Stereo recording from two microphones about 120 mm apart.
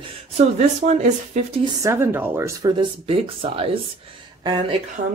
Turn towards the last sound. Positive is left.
turn(degrees=-90)